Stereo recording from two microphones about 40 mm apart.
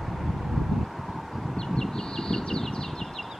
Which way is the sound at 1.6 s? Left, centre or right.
Centre.